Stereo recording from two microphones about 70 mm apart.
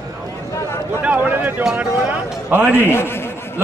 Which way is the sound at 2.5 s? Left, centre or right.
Right.